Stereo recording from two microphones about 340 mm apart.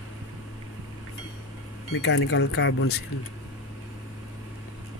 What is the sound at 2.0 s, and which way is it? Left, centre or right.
Speech, left.